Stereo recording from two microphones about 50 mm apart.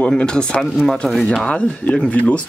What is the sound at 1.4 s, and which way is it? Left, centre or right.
Speech, left.